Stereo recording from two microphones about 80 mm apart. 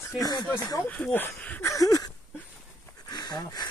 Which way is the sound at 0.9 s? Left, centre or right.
Left.